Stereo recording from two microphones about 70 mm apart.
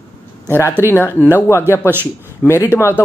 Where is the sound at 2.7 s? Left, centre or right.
Left.